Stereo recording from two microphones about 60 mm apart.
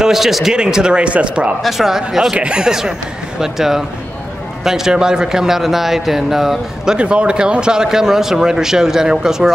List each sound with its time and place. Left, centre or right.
0.0 s speech: centre
1.6 s speech: centre
7.0 s speech: centre